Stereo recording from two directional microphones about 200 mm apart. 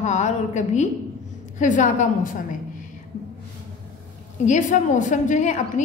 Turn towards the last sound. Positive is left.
turn(degrees=35)  # may be behind; listen again after turning